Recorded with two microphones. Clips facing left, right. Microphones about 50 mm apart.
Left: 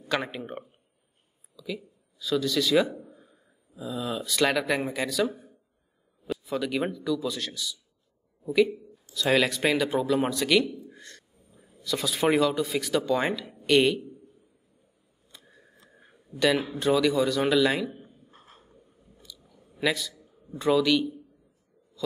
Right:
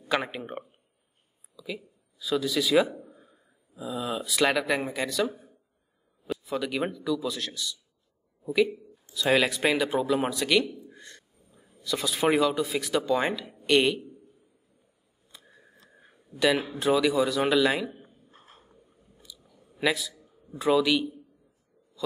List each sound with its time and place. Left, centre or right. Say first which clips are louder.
0.1 s a man's voice: right 1 dB; centre
9.1 s speech: even; centre
11.0 s wild animals: even; centre
11.6 s speech: even; centre
15.3 s a sound: even; centre
16.5 s speech: left 1 dB; centre
16.8 s speech: even; centre
18.0 s a sound: left 1 dB; centre
18.6 s chewing: left 1 dB; centre
19.8 s a man's voice: even; centre